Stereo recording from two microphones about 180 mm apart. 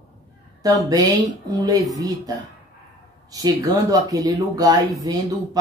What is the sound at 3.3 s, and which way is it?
Speech, 20° right (ahead or behind).